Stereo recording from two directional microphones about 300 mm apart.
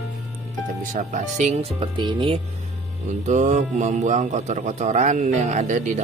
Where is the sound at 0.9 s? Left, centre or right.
Right.